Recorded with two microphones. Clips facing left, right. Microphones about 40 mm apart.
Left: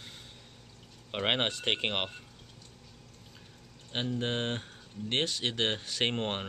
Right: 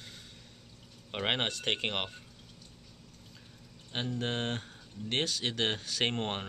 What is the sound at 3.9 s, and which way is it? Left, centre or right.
Speech, centre.